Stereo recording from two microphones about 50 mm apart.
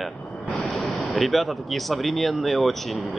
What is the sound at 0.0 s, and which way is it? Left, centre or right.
Speech, centre.